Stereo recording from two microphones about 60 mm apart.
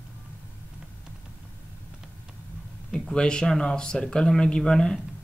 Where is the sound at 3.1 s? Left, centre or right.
Centre.